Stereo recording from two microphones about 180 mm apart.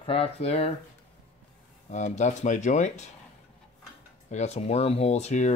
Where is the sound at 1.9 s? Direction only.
40° left (ahead or behind).